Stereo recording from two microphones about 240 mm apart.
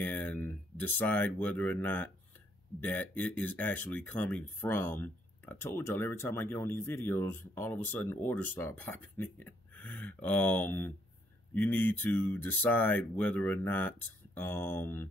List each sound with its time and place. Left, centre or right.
0.0 s speech: centre